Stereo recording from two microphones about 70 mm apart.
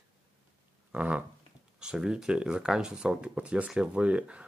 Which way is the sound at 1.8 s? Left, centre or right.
Centre.